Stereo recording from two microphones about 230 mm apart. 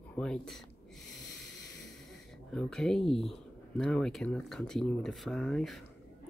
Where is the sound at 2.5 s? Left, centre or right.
Centre.